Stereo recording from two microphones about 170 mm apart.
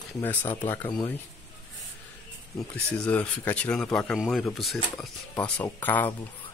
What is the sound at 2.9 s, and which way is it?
Speech, 10° left (ahead or behind).